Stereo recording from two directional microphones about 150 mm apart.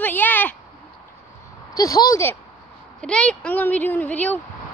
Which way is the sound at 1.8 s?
25° left (ahead or behind).